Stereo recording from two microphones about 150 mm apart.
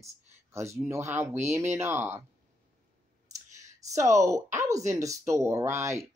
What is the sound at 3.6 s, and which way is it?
A woman's voice, 20° right (ahead or behind).